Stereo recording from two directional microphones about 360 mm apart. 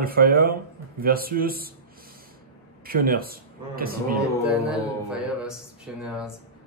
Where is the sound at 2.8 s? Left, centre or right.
Right.